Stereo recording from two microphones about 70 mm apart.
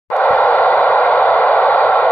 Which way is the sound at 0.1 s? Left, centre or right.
Left.